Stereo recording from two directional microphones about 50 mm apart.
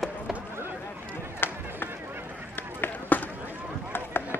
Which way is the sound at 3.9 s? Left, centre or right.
Left.